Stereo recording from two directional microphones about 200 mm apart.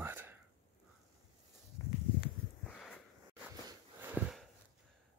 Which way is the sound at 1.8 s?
15° left (ahead or behind).